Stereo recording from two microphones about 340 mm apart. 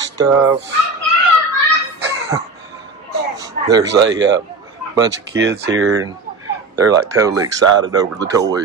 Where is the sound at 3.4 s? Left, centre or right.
Centre.